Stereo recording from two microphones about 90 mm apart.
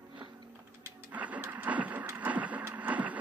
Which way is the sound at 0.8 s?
15° right (ahead or behind).